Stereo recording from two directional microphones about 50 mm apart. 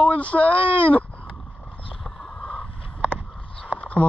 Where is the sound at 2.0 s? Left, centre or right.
Centre.